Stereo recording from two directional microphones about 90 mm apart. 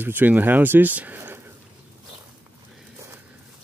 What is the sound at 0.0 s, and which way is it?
Speech, 20° right (ahead or behind).